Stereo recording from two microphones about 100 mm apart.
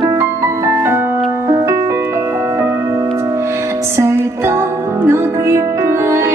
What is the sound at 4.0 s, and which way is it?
Music, 25° right (ahead or behind).